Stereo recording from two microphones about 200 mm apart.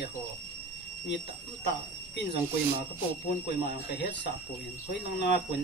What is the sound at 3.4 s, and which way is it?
Speech, 55° left (ahead or behind).